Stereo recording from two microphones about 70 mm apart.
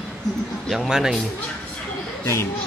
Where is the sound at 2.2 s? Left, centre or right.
Left.